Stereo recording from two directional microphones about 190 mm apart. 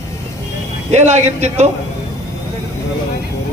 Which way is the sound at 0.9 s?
35° right (ahead or behind).